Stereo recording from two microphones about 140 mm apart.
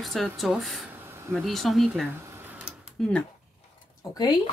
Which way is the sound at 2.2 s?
15° right (ahead or behind).